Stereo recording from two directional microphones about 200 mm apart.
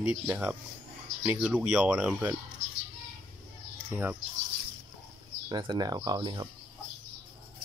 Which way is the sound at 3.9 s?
5° right (ahead or behind).